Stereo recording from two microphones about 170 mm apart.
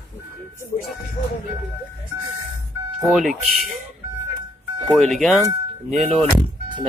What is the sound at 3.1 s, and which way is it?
Speech, centre (ahead or behind).